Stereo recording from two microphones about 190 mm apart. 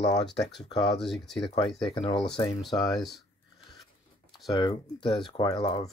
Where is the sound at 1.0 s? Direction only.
Centre (ahead or behind).